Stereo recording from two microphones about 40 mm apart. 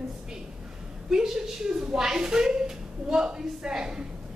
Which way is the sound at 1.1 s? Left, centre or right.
Centre.